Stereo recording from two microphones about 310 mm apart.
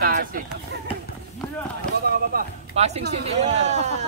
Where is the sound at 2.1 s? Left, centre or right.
Right.